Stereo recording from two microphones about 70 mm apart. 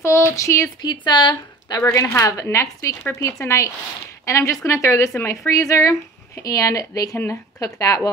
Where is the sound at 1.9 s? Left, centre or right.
Left.